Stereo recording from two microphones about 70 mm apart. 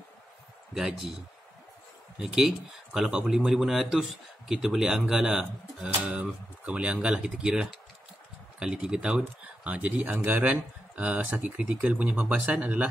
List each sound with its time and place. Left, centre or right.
0.7 s a man's voice: centre
2.2 s speech: centre; by 12.8 s right